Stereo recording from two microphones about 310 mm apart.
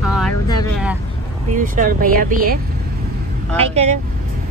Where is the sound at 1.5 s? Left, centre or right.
Right.